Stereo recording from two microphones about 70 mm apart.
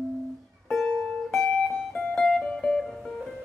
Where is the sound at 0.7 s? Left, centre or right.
Centre.